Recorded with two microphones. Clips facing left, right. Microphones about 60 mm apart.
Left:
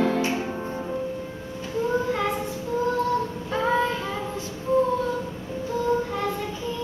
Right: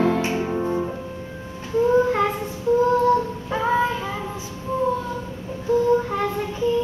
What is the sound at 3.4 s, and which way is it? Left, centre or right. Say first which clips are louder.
Child singing: right 2 dB; centre.